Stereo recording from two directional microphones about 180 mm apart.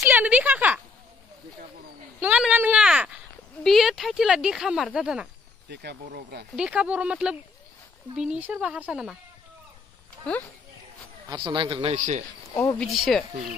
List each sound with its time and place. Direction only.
0.0 s a sound: 10° right (ahead or behind)
2.1 s a sound: 10° right (ahead or behind)
3.6 s speech: centre (ahead or behind)
5.7 s speech: 65° right (ahead or behind)
6.5 s speech: 5° right (ahead or behind)
11.2 s speech: 25° right (ahead or behind)
12.7 s speech: centre (ahead or behind)